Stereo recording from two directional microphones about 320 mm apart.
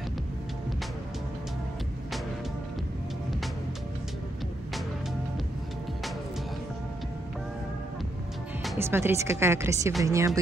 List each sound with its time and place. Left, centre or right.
8.6 s speech: centre